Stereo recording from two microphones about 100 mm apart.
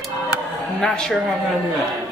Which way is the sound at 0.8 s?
5° left (ahead or behind).